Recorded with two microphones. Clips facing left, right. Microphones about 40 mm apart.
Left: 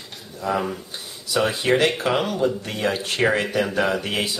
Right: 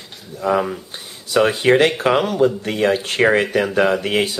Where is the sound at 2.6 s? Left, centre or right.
Right.